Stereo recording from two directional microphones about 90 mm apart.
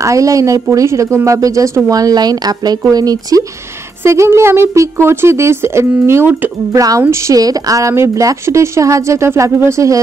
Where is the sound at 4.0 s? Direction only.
30° right (ahead or behind).